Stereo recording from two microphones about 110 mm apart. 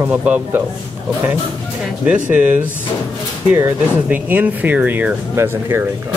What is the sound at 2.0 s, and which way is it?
Speech, 10° right (ahead or behind).